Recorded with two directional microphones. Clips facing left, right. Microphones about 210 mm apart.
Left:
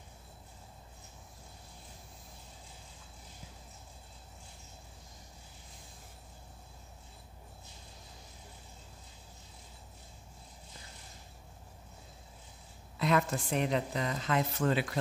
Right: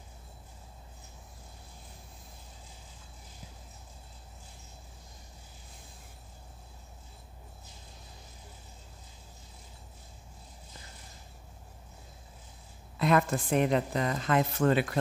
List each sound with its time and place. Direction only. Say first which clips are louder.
13.0 s speech: right 4 dB; 55° right (ahead or behind)